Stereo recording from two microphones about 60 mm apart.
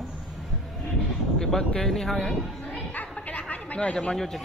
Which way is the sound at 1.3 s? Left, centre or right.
Centre.